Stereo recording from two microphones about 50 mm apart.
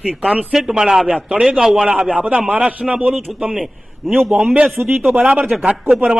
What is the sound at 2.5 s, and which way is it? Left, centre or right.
A man's voice, right.